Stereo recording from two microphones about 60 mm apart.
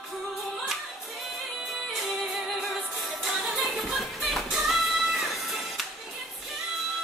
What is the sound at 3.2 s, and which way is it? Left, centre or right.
Music, centre.